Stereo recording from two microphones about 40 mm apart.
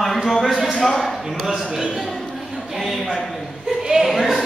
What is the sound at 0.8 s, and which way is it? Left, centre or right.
Speech, centre.